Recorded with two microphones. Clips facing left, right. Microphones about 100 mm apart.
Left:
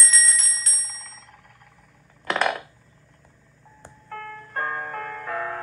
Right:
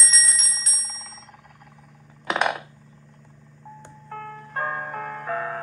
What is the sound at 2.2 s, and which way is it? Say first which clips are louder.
Coin: even; 10° right (ahead or behind).